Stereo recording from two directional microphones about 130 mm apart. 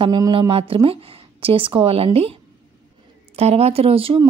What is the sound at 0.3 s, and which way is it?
Speech, 45° right (ahead or behind).